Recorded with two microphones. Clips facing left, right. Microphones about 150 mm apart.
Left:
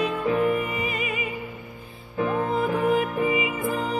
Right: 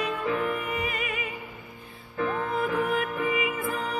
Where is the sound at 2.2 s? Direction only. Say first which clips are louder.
Left 4 dB; 25° left (ahead or behind).